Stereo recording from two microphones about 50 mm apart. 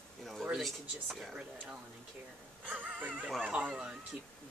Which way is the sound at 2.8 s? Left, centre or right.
Right.